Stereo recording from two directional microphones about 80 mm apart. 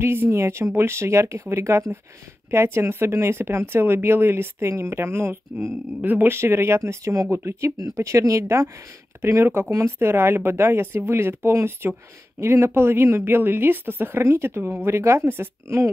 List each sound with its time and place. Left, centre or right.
0.0 s speech: right
5.9 s speech: right